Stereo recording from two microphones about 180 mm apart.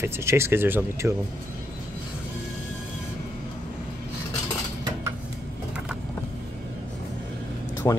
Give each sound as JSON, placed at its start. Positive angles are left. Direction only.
{"t": 0.0, "sound": "speech", "side_deg": -15}
{"t": 7.8, "sound": "speech", "side_deg": 15}